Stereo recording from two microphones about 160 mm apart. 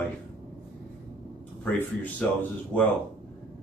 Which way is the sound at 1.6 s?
10° left (ahead or behind).